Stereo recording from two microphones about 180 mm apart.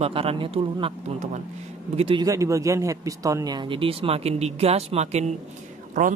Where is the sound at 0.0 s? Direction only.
30° right (ahead or behind).